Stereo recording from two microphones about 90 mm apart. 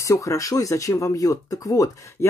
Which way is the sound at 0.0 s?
35° left (ahead or behind).